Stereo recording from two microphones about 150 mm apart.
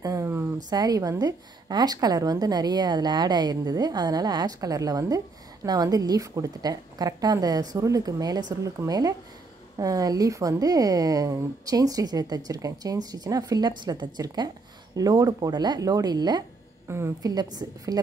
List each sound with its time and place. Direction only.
0.0 s a sound: 20° right (ahead or behind)
0.7 s speech: 25° right (ahead or behind)
16.8 s speech: 15° right (ahead or behind)